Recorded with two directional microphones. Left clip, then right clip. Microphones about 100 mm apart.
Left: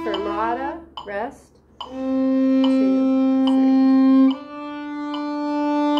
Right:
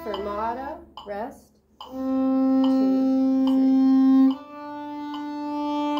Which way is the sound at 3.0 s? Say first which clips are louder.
Left 3 dB; 50° left (ahead or behind).